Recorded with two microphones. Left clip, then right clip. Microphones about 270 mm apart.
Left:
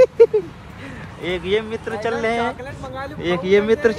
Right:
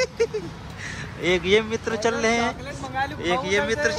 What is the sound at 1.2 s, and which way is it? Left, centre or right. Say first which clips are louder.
Speech: right 1 dB; centre.